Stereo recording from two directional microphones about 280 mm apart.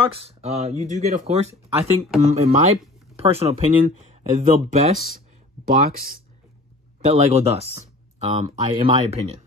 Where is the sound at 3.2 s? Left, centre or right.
Right.